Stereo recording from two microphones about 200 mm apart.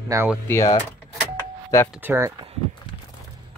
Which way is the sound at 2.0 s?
10° right (ahead or behind).